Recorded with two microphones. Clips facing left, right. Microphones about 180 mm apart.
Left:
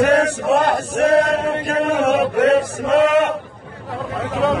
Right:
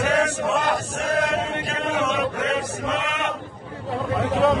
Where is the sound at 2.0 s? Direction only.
45° left (ahead or behind).